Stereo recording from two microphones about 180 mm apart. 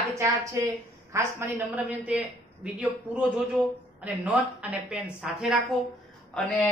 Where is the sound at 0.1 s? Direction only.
15° right (ahead or behind).